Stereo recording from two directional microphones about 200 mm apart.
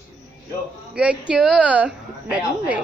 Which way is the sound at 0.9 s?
5° right (ahead or behind).